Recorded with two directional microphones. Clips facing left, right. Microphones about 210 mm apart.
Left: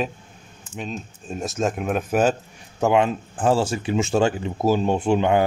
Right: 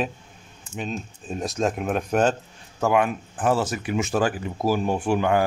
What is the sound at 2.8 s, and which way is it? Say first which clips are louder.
Speech: left 2 dB; 25° left (ahead or behind).